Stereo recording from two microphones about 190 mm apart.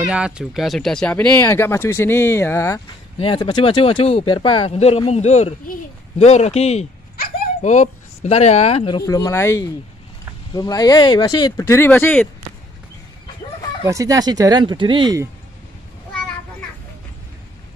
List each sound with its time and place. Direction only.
0.0 s speech: 5° right (ahead or behind); by 2.8 s 15° left (ahead or behind)
3.2 s speech: 25° left (ahead or behind)
7.2 s speech: 45° left (ahead or behind); by 12.3 s 10° left (ahead or behind)
13.8 s speech: 15° right (ahead or behind)